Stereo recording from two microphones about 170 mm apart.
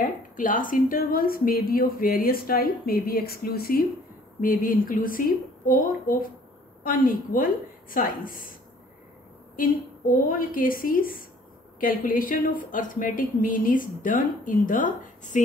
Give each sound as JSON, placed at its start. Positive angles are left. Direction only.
{"t": 0.0, "sound": "a woman's voice", "side_deg": 55}
{"t": 9.6, "sound": "a woman's voice", "side_deg": 55}